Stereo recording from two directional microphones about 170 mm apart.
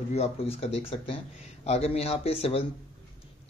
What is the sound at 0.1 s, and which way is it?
Speech, 40° left (ahead or behind).